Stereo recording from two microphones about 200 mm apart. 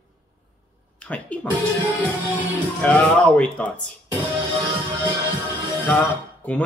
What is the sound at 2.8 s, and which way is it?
Speech, 5° left (ahead or behind).